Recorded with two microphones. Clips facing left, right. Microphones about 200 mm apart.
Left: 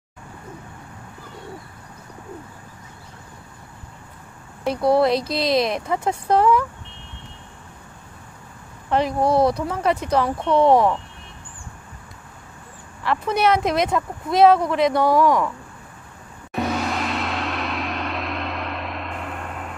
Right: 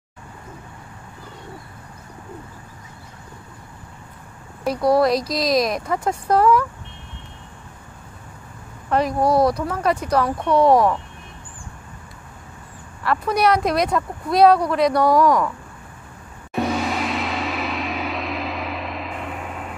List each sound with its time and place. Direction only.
4.6 s speech: 25° left (ahead or behind)
8.9 s speech: 25° left (ahead or behind)
13.0 s speech: 20° left (ahead or behind)
15.0 s speech: centre (ahead or behind)
16.6 s gong: centre (ahead or behind)